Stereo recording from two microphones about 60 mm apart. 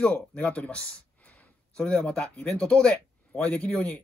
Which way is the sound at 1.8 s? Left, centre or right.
Centre.